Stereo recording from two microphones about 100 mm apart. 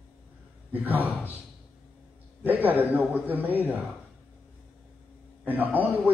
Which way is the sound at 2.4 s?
20° right (ahead or behind).